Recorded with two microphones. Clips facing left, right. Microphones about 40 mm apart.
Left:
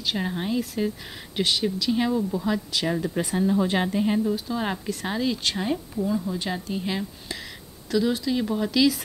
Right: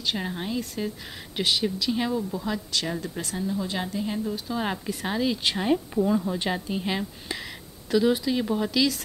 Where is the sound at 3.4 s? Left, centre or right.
Left.